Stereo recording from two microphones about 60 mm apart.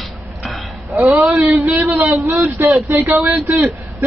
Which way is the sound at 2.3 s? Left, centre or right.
Right.